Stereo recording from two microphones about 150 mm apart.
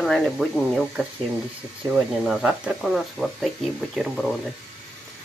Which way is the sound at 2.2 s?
5° right (ahead or behind).